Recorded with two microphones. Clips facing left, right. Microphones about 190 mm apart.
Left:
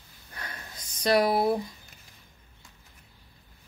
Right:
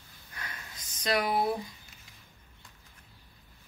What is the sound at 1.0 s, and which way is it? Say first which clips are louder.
Speech: left 6 dB; 35° left (ahead or behind).